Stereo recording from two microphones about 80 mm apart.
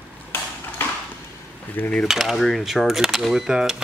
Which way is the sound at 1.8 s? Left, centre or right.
Left.